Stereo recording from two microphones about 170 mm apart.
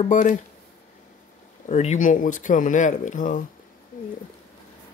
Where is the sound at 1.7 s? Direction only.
45° left (ahead or behind).